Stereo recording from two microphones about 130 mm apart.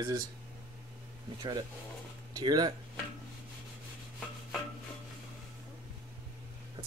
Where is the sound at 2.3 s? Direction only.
30° right (ahead or behind).